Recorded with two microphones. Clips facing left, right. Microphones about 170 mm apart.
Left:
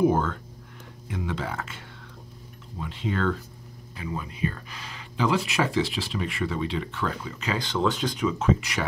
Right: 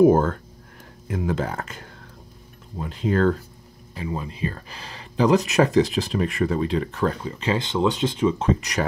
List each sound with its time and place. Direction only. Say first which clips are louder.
0.0 s speech: right 7 dB; 45° right (ahead or behind)
3.9 s speech: right 4 dB; 30° right (ahead or behind)